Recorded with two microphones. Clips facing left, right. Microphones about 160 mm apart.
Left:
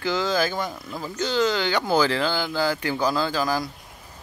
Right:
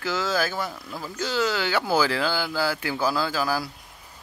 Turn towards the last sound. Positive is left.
turn(degrees=-5)  # may be behind; listen again after turning